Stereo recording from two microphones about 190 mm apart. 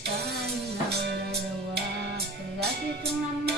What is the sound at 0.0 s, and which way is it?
Music, 60° right (ahead or behind).